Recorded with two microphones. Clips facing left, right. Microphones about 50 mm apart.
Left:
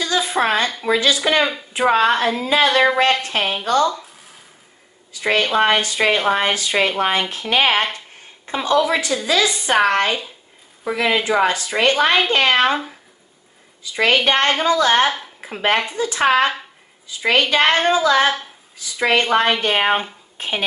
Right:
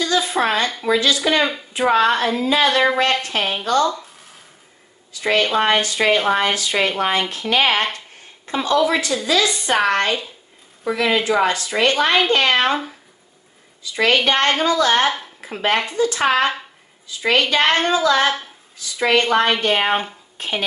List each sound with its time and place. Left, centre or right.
0.2 s a sound: centre
0.8 s a woman's voice: centre
3.8 s a sound: centre
5.4 s a woman's voice: centre
6.1 s a woman's voice: centre
6.4 s a woman's voice: left
13.9 s a woman's voice: centre